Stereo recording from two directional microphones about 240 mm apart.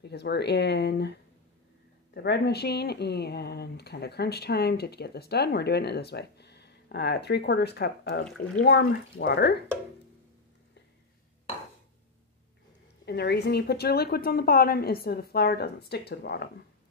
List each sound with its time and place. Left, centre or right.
0.0 s speech: left
2.1 s speech: left
13.0 s a woman's voice: left